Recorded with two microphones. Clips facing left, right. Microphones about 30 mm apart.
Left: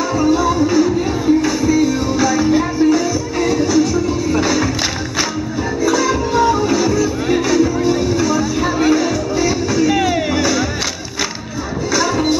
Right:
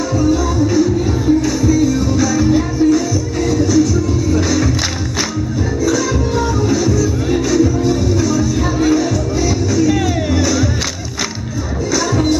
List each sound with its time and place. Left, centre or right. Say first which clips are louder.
0.1 s music: left 1 dB; centre
5.9 s music: left 2 dB; centre
11.9 s music: even; centre